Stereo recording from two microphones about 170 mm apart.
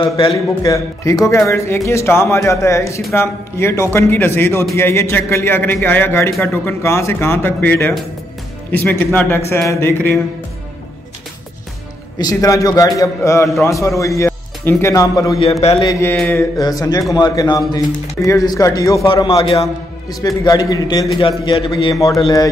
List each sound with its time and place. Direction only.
0.0 s a man's voice: 30° left (ahead or behind); by 10.1 s 15° left (ahead or behind)
12.2 s a man's voice: 20° left (ahead or behind)
20.2 s a man's voice: 20° left (ahead or behind)